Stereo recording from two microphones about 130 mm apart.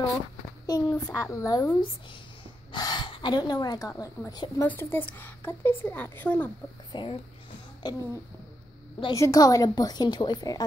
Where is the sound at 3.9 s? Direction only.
25° left (ahead or behind).